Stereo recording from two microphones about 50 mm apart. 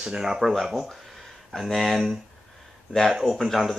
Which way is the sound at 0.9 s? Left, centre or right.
Centre.